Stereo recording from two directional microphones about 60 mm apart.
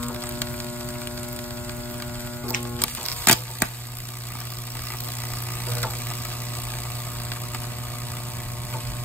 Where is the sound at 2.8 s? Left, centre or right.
Left.